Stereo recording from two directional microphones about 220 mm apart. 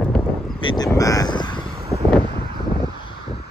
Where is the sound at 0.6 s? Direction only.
20° left (ahead or behind).